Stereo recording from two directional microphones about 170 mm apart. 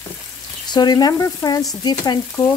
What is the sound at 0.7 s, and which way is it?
Speech, 25° left (ahead or behind).